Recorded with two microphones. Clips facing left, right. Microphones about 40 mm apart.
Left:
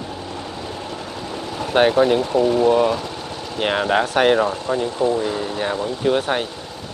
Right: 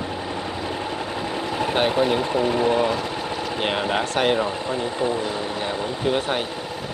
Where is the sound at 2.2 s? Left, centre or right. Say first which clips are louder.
Left 4 dB; centre.